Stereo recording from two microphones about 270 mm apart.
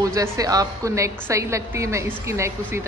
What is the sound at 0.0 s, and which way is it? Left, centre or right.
A woman's voice, centre.